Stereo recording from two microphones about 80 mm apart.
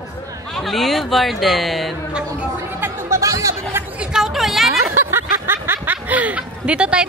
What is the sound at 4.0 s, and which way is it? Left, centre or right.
Chatter, centre.